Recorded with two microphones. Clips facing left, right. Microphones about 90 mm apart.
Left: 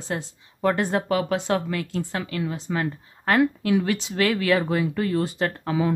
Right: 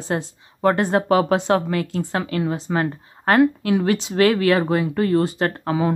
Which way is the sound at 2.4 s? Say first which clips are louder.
Right 3 dB; 45° right (ahead or behind).